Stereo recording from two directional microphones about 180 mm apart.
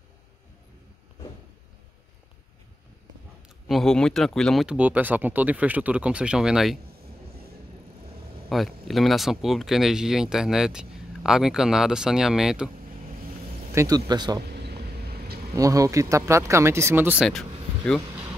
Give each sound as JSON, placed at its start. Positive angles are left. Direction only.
{"t": 3.6, "sound": "speech", "side_deg": 0}
{"t": 8.5, "sound": "speech", "side_deg": 0}
{"t": 13.7, "sound": "speech", "side_deg": -20}
{"t": 14.5, "sound": "vehicle", "side_deg": -65}
{"t": 15.5, "sound": "speech", "side_deg": -20}
{"t": 17.3, "sound": "vehicle", "side_deg": 0}